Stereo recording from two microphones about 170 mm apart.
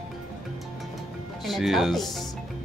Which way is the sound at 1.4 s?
Centre (ahead or behind).